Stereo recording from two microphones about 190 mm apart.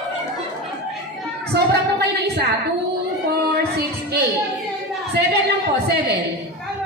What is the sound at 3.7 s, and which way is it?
Speech, 55° right (ahead or behind).